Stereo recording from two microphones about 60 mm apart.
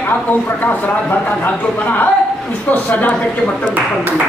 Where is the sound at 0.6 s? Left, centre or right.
Left.